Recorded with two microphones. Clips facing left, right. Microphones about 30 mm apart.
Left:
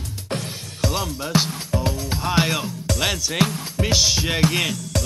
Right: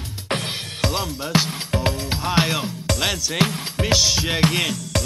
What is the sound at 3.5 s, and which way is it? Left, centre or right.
Music, right.